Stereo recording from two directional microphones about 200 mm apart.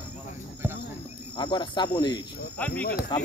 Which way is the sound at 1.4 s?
25° left (ahead or behind).